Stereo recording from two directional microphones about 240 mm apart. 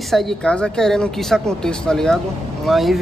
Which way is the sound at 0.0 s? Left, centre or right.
Centre.